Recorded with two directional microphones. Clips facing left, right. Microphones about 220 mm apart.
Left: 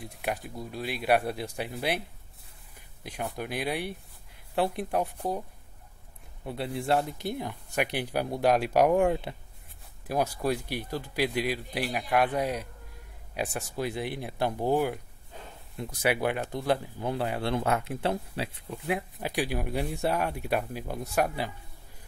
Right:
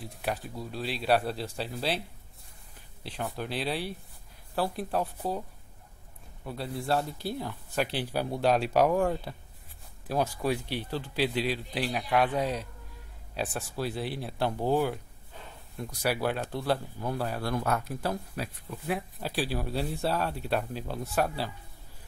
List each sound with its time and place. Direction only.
0.0 s speech: 15° left (ahead or behind)
3.0 s speech: 15° left (ahead or behind)
6.4 s speech: 25° left (ahead or behind)
19.1 s speech: 15° left (ahead or behind)